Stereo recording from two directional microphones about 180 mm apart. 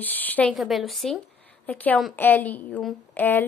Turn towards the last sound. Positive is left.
turn(degrees=10)  # may be behind; listen again after turning